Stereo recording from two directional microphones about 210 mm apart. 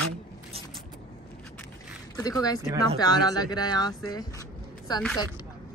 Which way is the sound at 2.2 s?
15° left (ahead or behind).